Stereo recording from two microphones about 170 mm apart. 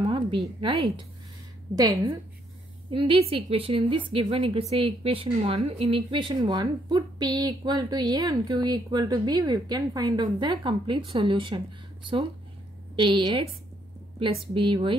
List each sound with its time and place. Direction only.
0.0 s a sound: 30° right (ahead or behind)
0.6 s a woman's voice: 30° right (ahead or behind)
1.8 s a woman's voice: 20° right (ahead or behind)
2.9 s a woman's voice: 35° right (ahead or behind)
14.5 s a woman's voice: 30° right (ahead or behind)